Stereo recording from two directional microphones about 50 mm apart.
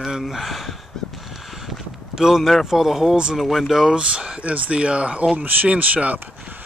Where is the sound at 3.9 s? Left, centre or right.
Centre.